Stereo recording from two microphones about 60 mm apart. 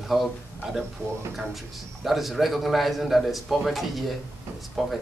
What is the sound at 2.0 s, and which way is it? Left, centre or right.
A man's voice, centre.